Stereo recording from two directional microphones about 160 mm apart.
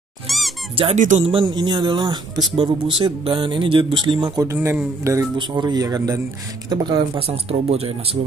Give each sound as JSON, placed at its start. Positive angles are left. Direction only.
{"t": 0.3, "sound": "squeak", "side_deg": 0}
{"t": 0.7, "sound": "speech", "side_deg": -40}
{"t": 4.5, "sound": "speech", "side_deg": -15}